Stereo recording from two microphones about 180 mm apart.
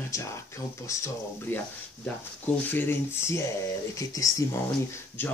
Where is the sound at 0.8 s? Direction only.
15° left (ahead or behind).